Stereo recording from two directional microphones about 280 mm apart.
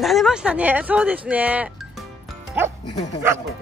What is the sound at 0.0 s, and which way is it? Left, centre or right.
Speech, centre.